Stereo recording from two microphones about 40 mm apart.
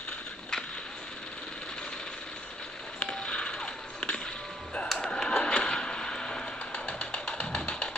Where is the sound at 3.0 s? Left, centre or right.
Left.